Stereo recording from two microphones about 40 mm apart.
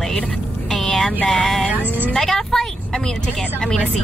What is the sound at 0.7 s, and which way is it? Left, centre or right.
Vehicle, centre.